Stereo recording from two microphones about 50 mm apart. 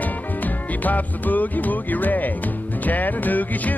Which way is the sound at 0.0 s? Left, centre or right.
Left.